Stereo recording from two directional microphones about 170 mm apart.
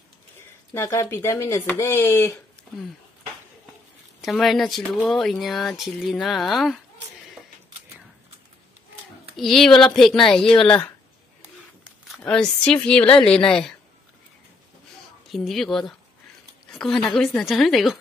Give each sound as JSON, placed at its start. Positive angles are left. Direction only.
{"t": 0.7, "sound": "a woman's voice", "side_deg": 15}
{"t": 4.2, "sound": "speech", "side_deg": 0}
{"t": 9.4, "sound": "speech", "side_deg": 0}
{"t": 11.4, "sound": "a sound", "side_deg": -5}
{"t": 12.2, "sound": "a woman's voice", "side_deg": 5}
{"t": 15.2, "sound": "speech", "side_deg": 0}